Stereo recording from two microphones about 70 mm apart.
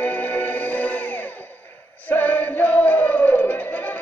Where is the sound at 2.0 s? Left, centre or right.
Left.